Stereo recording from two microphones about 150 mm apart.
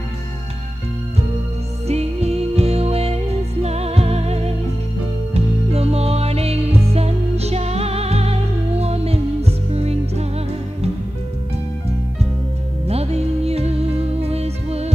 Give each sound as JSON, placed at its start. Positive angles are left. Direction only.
{"t": 1.9, "sound": "music", "side_deg": -45}
{"t": 12.8, "sound": "music", "side_deg": -45}